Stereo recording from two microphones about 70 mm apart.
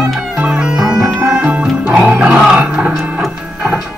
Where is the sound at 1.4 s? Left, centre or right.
Centre.